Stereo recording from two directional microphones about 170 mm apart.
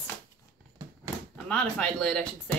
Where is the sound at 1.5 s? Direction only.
5° left (ahead or behind).